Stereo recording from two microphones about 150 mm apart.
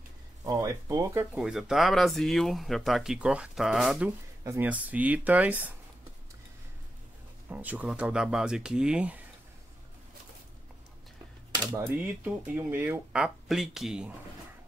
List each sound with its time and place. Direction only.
0.4 s speech: 25° right (ahead or behind)
1.4 s speech: 5° right (ahead or behind)
7.4 s speech: 10° right (ahead or behind)
11.7 s speech: 15° right (ahead or behind)